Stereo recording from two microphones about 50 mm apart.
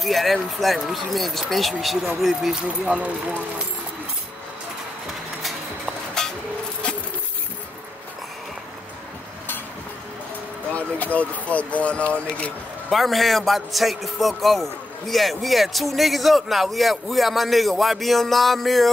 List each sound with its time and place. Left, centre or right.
0.0 s a man's voice: centre
2.5 s speech: centre
3.0 s speech: right
6.2 s a sound: centre
10.7 s speech: left
12.9 s a man's voice: centre